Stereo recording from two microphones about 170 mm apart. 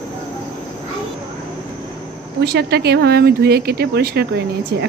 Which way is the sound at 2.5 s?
70° right (ahead or behind).